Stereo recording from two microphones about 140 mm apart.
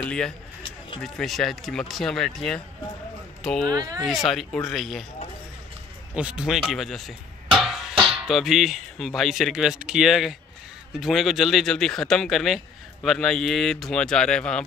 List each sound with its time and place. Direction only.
0.0 s a man's voice: 5° left (ahead or behind)
3.7 s speech: 25° right (ahead or behind)
4.3 s speech: centre (ahead or behind)
6.1 s speech: 5° right (ahead or behind)